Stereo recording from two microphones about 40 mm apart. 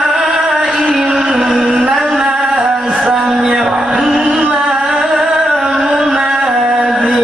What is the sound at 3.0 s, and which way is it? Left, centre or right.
Music, centre.